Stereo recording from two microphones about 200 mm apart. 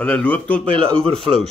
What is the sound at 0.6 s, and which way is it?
Speech, 25° right (ahead or behind).